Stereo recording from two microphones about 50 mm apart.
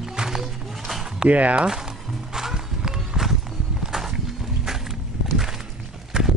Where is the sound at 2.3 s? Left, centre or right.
Centre.